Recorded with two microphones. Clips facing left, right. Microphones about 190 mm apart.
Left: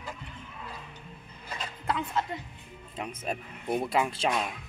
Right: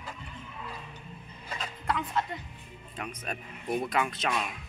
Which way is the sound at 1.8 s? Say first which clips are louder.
Even; 25° left (ahead or behind).